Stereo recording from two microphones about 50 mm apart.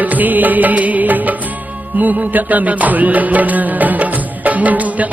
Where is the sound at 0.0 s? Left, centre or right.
Right.